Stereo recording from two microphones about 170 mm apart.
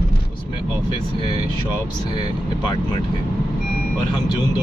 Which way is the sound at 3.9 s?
25° left (ahead or behind).